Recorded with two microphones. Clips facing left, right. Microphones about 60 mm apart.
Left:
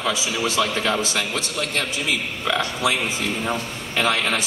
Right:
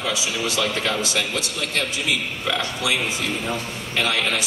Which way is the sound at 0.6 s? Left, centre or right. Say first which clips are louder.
Left 1 dB; centre.